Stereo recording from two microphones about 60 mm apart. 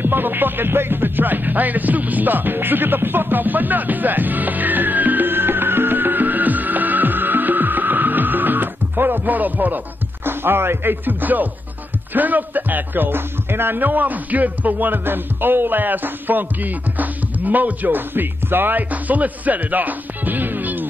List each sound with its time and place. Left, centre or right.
0.0 s music: right
10.2 s speech: right